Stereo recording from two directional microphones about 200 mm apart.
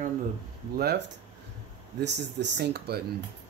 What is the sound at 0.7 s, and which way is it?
Speech, 50° right (ahead or behind).